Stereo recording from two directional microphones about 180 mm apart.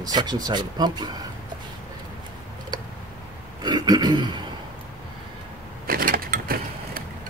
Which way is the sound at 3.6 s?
25° right (ahead or behind).